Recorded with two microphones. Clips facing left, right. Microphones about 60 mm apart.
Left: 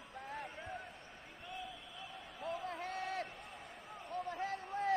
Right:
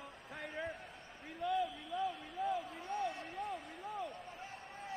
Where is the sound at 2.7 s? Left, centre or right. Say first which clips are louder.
Right 1 dB; left.